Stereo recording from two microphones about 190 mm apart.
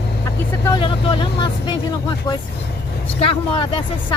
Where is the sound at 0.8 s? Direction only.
25° left (ahead or behind).